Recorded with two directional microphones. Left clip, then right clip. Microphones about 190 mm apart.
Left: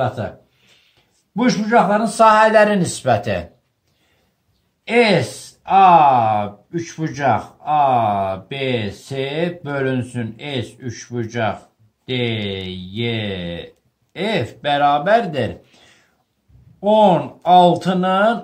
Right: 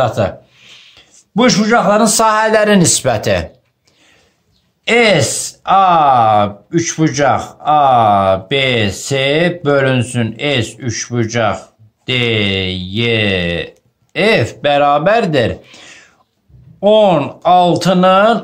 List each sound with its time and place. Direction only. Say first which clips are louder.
1.3 s speech: right 4 dB; 40° right (ahead or behind)
4.8 s speech: right 5 dB; 40° right (ahead or behind)